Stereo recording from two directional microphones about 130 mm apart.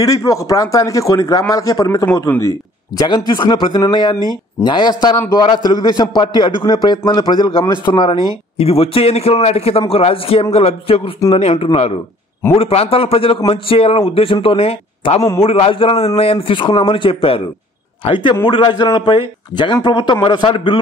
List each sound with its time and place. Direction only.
0.0 s a man's voice: 25° left (ahead or behind)
8.5 s a man's voice: 50° left (ahead or behind)